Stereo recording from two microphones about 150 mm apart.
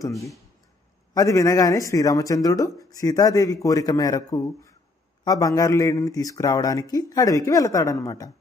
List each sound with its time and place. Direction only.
0.0 s speech: 20° left (ahead or behind)